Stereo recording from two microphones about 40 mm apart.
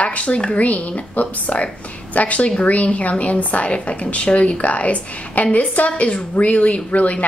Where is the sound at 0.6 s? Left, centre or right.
Left.